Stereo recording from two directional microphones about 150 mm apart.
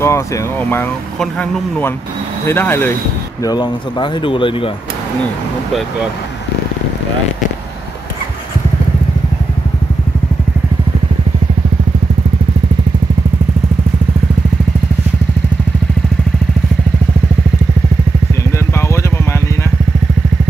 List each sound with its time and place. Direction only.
0.0 s speech: 15° left (ahead or behind)
3.4 s speech: 30° left (ahead or behind)
18.7 s vehicle: 20° left (ahead or behind)